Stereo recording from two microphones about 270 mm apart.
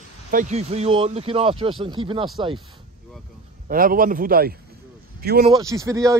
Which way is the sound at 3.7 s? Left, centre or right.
Right.